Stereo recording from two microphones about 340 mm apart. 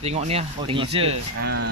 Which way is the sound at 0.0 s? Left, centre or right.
Centre.